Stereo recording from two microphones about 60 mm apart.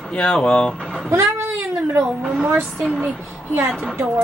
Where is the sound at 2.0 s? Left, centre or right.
Centre.